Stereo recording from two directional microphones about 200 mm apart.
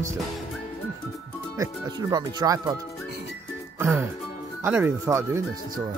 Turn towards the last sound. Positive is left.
turn(degrees=-15)  # may be behind; listen again after turning